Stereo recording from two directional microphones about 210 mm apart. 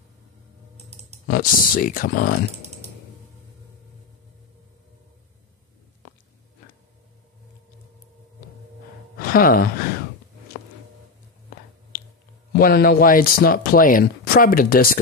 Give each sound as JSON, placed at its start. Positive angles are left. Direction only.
{"t": 1.2, "sound": "speech", "side_deg": 45}
{"t": 9.2, "sound": "sigh", "side_deg": 45}
{"t": 12.5, "sound": "speech", "side_deg": 45}